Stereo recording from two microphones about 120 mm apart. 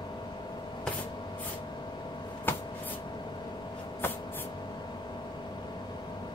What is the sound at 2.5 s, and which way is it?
Spray, 20° left (ahead or behind).